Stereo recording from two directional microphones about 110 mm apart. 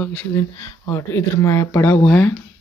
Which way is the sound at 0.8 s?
25° left (ahead or behind).